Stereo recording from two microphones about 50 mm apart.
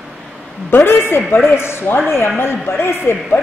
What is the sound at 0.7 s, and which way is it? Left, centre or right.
A woman's voice, left.